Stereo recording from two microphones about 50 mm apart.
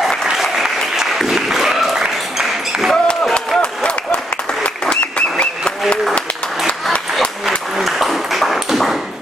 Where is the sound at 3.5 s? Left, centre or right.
Left.